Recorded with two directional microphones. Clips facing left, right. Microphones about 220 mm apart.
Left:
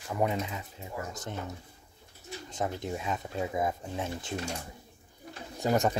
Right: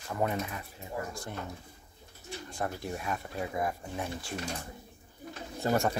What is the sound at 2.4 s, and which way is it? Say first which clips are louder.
Speech: left 2 dB; 20° left (ahead or behind).